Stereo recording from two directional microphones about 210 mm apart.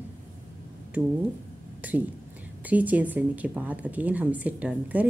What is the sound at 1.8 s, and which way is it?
Speech, 5° right (ahead or behind).